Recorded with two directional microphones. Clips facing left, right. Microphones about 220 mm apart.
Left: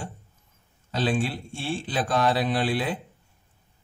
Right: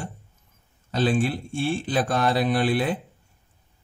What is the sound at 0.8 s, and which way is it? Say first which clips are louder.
A man's voice: right 3 dB; 50° right (ahead or behind).